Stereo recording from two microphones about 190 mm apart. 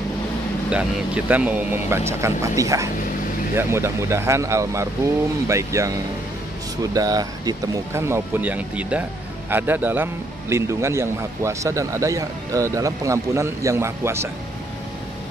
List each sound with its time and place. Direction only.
0.7 s a man's voice: 5° right (ahead or behind)